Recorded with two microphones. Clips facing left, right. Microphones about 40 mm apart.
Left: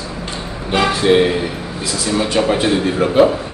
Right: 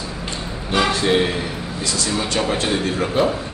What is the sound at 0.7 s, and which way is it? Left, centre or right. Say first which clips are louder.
A man's voice: left 4 dB; centre.